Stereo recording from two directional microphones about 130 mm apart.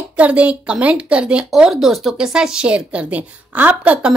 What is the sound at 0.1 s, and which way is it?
A woman's voice, 10° right (ahead or behind).